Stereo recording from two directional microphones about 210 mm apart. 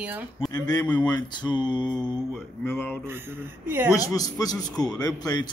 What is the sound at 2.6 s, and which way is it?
Speech, 10° left (ahead or behind).